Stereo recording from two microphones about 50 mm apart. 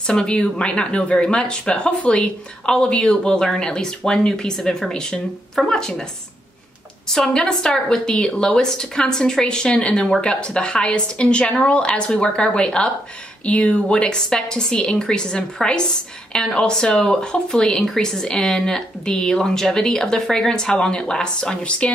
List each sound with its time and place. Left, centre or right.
0.0 s speech: centre
7.1 s a woman's voice: centre